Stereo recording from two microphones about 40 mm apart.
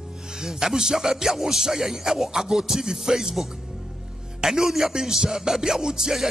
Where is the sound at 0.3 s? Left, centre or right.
Centre.